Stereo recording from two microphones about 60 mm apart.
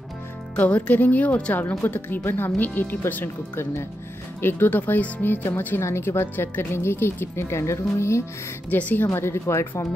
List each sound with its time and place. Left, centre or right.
0.6 s speech: left
4.4 s speech: left
5.8 s speech: left
8.6 s speech: left
9.0 s speech: left